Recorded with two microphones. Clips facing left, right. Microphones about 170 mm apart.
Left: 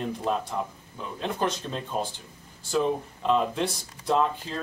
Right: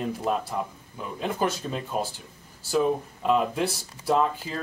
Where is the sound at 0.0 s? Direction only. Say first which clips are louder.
Right 1 dB; 5° right (ahead or behind).